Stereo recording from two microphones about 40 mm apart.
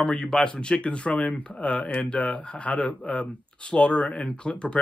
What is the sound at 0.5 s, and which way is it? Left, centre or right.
Speech, left.